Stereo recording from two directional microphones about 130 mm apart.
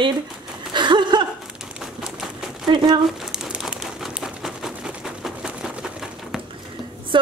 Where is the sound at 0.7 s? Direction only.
35° right (ahead or behind).